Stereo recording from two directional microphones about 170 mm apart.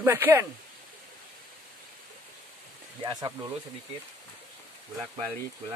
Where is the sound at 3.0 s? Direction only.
25° right (ahead or behind).